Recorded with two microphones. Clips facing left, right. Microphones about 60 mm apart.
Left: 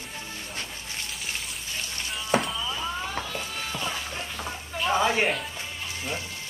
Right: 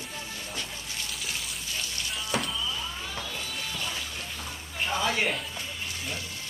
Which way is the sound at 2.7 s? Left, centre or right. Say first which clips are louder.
Left 4 dB; left.